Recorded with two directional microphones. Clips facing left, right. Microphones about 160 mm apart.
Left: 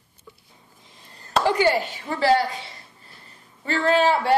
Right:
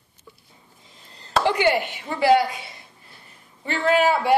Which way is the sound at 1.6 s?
10° right (ahead or behind).